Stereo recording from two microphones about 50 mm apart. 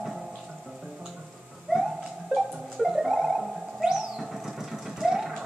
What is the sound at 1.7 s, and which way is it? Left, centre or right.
Music, centre.